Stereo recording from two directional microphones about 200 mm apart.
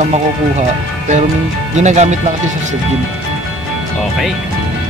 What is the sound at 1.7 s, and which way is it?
Speech, 35° right (ahead or behind).